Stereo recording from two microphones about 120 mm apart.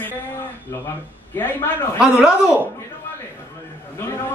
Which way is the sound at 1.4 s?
15° left (ahead or behind).